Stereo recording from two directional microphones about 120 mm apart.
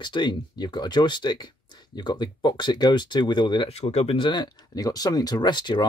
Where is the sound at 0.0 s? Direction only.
40° left (ahead or behind).